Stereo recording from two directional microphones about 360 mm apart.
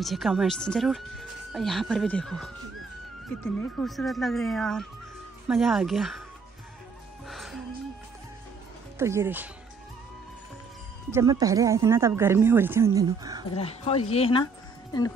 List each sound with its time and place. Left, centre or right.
0.0 s speech: centre
7.2 s music: centre
8.9 s speech: centre
11.1 s speech: centre
13.6 s speech: centre